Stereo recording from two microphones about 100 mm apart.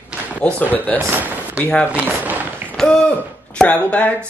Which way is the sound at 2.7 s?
10° left (ahead or behind).